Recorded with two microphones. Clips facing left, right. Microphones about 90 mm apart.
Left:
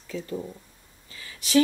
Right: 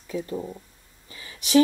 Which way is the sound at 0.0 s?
20° right (ahead or behind).